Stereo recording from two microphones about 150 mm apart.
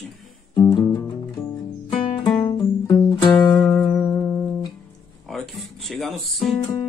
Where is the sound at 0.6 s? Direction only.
25° left (ahead or behind).